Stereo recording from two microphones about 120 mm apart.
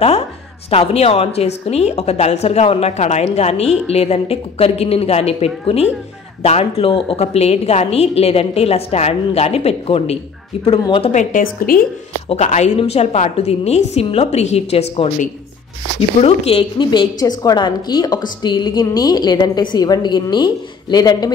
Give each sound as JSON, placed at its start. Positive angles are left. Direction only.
{"t": 0.7, "sound": "a woman's voice", "side_deg": 60}
{"t": 11.1, "sound": "a woman's voice", "side_deg": 90}
{"t": 12.3, "sound": "speech", "side_deg": 70}
{"t": 12.7, "sound": "a woman's voice", "side_deg": 60}
{"t": 16.2, "sound": "a woman's voice", "side_deg": 60}